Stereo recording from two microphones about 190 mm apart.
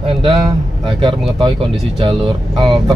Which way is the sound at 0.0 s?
25° right (ahead or behind).